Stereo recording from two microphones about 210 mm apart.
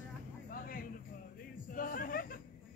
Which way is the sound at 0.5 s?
45° left (ahead or behind).